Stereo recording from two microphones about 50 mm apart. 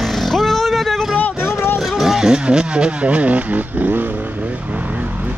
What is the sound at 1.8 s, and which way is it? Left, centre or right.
Speech, centre.